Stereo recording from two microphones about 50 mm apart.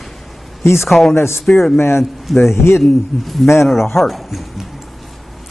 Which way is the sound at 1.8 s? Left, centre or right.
Left.